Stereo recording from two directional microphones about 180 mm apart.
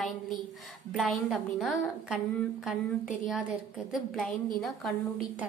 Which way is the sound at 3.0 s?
50° left (ahead or behind).